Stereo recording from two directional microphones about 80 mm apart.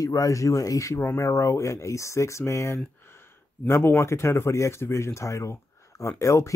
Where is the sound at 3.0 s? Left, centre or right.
Left.